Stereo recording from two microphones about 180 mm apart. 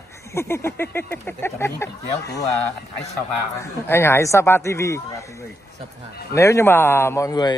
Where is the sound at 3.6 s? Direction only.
15° left (ahead or behind).